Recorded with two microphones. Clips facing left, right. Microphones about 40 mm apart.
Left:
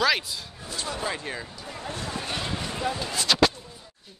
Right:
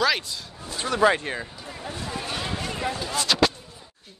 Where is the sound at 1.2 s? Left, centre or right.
Right.